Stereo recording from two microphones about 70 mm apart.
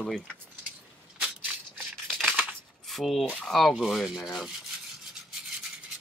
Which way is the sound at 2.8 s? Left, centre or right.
Centre.